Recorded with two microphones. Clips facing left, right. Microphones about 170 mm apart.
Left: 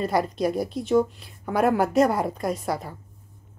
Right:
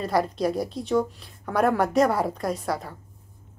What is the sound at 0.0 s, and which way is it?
A woman's voice, centre (ahead or behind).